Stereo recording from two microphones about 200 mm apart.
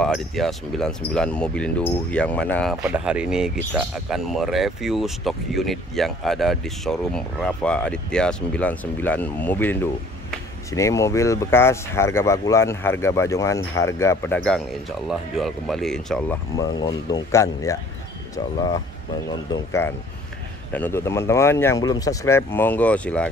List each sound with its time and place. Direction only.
0.0 s speech: centre (ahead or behind)
2.8 s speech: 5° right (ahead or behind)
16.5 s speech: 20° left (ahead or behind)